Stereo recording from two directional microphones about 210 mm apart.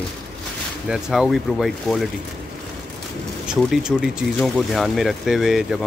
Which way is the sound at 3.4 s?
5° right (ahead or behind).